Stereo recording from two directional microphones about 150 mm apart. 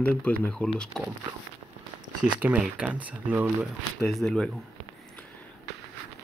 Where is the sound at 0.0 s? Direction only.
10° left (ahead or behind).